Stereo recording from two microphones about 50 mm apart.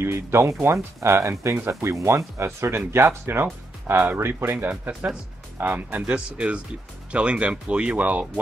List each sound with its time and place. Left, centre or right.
0.0 s speech: right
2.9 s speech: right
4.6 s speech: right